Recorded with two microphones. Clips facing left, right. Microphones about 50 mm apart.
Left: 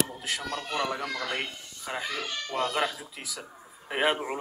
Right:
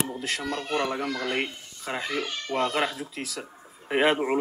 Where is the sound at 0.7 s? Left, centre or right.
Right.